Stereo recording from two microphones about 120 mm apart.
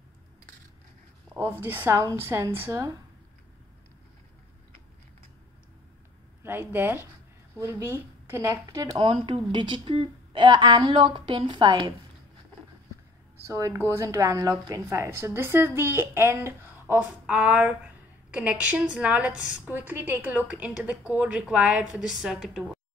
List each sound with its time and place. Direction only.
1.6 s a woman's voice: 15° right (ahead or behind)
6.4 s a woman's voice: 15° right (ahead or behind)
8.9 s a woman's voice: 45° right (ahead or behind)
13.5 s a woman's voice: 25° right (ahead or behind); by 22.6 s 5° right (ahead or behind)